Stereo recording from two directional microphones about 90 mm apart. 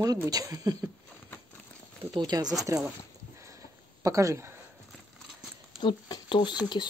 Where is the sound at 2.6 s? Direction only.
35° right (ahead or behind).